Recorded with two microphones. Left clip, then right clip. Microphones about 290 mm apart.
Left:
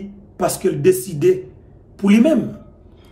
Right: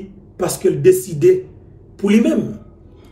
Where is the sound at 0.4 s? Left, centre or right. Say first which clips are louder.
Right 2 dB; centre.